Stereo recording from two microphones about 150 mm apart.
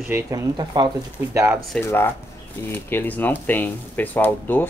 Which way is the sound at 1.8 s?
15° left (ahead or behind).